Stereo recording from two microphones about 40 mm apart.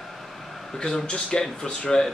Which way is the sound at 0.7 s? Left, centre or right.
Centre.